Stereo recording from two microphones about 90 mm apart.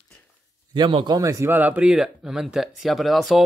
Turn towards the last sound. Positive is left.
turn(degrees=0)  # may be behind; listen again after turning